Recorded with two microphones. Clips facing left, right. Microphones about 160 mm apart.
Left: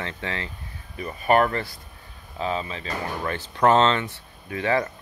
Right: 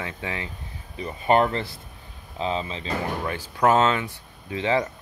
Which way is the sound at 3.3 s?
10° right (ahead or behind).